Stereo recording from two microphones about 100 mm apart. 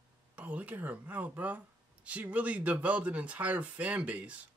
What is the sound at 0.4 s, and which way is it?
Speech, 15° right (ahead or behind).